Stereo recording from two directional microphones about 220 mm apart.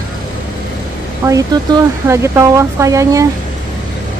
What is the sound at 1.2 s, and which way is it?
Speech, 15° right (ahead or behind).